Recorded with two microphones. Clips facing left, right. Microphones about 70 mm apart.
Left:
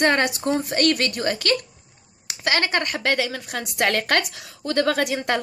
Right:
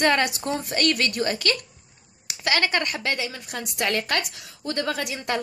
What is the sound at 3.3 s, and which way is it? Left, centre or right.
A woman's voice, left.